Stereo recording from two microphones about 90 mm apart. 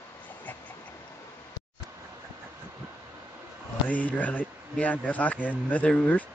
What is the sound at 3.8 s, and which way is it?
Speech, 20° left (ahead or behind).